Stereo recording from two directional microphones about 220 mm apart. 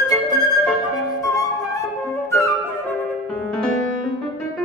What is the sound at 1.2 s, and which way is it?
Flute, 15° left (ahead or behind).